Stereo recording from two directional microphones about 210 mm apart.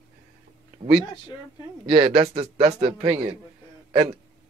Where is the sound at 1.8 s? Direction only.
25° right (ahead or behind).